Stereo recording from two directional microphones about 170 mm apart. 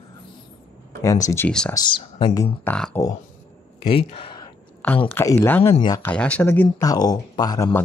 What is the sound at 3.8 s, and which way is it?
Speech, 35° left (ahead or behind).